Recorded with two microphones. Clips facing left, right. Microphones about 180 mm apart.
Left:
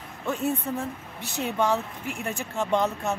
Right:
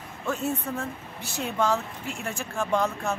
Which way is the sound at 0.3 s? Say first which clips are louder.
Left 2 dB; 15° left (ahead or behind).